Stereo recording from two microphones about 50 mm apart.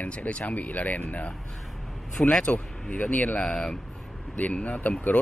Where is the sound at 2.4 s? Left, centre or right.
Left.